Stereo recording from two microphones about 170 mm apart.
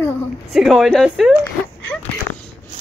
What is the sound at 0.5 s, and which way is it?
Speech, centre (ahead or behind).